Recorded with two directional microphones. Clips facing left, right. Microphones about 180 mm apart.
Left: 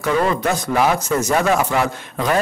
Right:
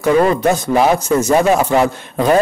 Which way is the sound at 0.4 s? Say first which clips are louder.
Right 5 dB; 25° right (ahead or behind).